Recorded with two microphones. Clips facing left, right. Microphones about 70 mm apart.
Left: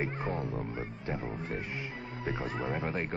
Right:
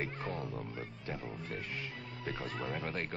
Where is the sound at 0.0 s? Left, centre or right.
Left.